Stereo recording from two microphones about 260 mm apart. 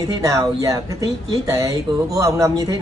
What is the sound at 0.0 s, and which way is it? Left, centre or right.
Speech, centre.